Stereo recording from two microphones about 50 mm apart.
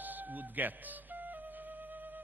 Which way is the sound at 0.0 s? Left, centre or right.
Right.